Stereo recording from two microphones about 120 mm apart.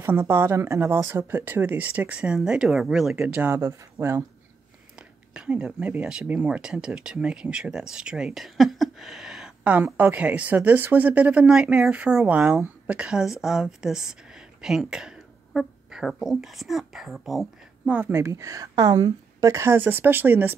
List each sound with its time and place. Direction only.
0.0 s speech: 20° right (ahead or behind)
3.4 s a woman's voice: 20° right (ahead or behind)
5.3 s speech: 10° right (ahead or behind)
17.9 s a woman's voice: 20° right (ahead or behind)